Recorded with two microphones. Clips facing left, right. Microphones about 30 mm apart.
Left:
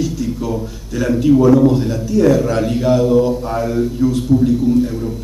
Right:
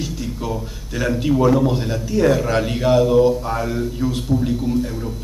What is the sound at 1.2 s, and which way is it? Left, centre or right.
A man's voice, centre.